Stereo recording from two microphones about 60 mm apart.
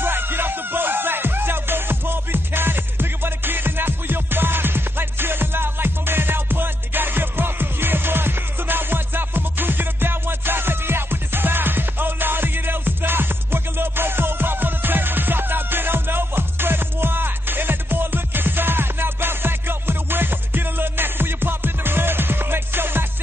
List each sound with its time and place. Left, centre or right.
0.0 s music: right